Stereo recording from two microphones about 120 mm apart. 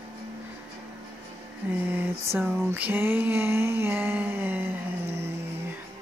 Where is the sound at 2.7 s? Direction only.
15° right (ahead or behind).